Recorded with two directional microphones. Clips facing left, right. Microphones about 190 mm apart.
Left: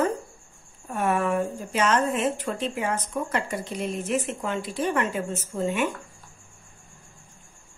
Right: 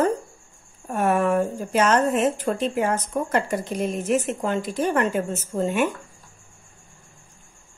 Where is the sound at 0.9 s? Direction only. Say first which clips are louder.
Right 4 dB; 45° right (ahead or behind).